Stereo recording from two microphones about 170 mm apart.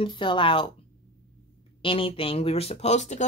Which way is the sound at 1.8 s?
30° left (ahead or behind).